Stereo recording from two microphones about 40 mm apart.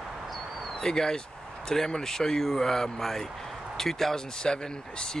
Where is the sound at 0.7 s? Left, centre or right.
Centre.